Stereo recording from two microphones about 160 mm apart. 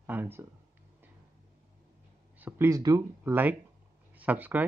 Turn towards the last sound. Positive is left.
turn(degrees=-10)  # may be behind; listen again after turning